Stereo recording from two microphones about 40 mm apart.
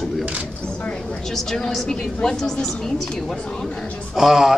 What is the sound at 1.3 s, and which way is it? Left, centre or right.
A woman's voice, centre.